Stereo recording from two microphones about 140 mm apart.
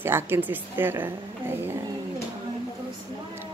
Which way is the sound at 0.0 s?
15° right (ahead or behind).